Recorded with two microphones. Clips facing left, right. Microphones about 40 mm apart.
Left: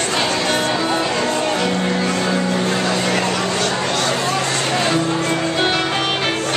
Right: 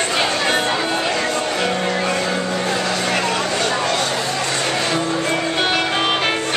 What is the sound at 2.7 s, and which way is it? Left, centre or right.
Vehicle, centre.